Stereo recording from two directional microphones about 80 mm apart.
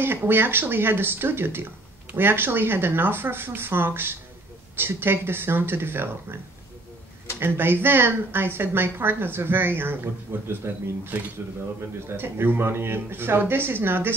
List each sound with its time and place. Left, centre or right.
0.0 s speech: right
7.3 s speech: right